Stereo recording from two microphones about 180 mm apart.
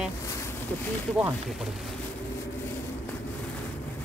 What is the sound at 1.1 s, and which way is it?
Speech, 5° right (ahead or behind).